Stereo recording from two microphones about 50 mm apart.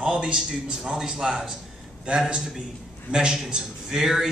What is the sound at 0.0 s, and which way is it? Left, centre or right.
Speech, centre.